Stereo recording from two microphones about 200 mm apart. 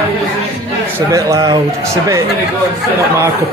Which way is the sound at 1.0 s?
15° right (ahead or behind).